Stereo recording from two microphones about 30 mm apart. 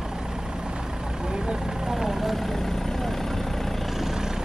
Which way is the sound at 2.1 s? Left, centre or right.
Centre.